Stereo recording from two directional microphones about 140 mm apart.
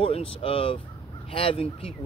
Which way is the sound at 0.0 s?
40° left (ahead or behind).